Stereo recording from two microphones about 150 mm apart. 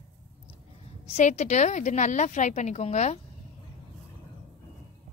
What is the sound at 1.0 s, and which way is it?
A woman's voice, 50° left (ahead or behind).